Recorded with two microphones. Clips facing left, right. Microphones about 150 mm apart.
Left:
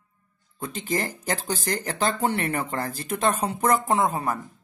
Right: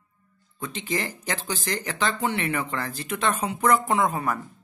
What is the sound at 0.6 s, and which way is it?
A man's voice, 40° left (ahead or behind).